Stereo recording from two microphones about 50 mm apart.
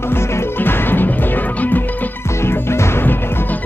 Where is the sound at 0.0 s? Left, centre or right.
Left.